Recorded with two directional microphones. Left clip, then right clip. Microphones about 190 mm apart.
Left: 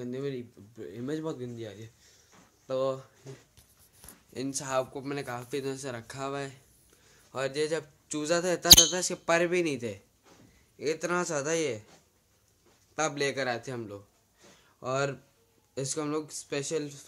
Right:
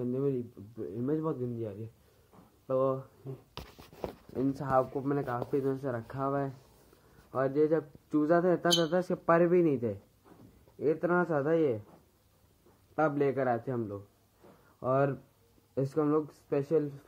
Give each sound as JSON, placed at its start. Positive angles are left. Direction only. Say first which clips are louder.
{"t": 0.0, "sound": "speech", "louder": "right 3 dB", "side_deg": -5}
{"t": 0.7, "sound": "speech", "louder": "right 3 dB", "side_deg": 10}
{"t": 4.6, "sound": "speech", "louder": "right 1 dB", "side_deg": 10}
{"t": 12.9, "sound": "speech", "louder": "right 1 dB", "side_deg": 5}